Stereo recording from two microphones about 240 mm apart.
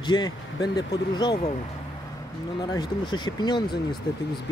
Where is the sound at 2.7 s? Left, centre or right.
Centre.